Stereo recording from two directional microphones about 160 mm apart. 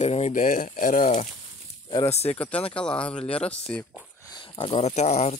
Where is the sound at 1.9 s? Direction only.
35° left (ahead or behind).